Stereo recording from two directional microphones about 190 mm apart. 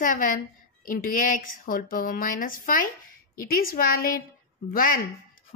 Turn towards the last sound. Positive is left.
turn(degrees=50)  # may be behind; listen again after turning